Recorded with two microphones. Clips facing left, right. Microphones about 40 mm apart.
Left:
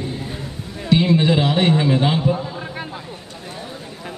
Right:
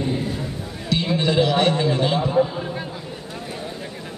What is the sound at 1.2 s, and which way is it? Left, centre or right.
A man's voice, centre.